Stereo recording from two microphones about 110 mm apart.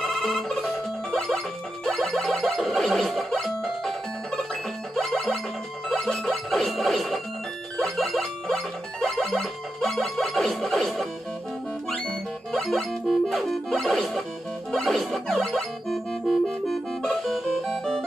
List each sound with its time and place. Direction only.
0.0 s ringtone: centre (ahead or behind)
1.9 s music: centre (ahead or behind)